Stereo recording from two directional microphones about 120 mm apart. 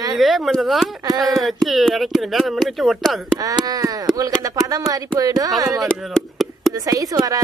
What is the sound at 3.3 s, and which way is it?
Speech, 30° right (ahead or behind).